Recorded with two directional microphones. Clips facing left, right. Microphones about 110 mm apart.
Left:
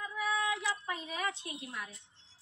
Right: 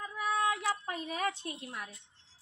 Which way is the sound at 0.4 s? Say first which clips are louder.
Right 3 dB; 50° right (ahead or behind).